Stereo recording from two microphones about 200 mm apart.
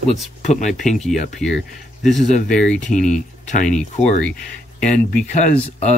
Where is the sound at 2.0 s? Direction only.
35° left (ahead or behind).